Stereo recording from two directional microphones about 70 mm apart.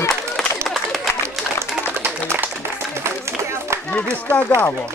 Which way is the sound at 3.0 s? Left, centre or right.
Right.